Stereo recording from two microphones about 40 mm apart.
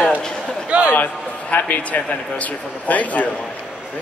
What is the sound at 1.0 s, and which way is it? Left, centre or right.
Speech, left.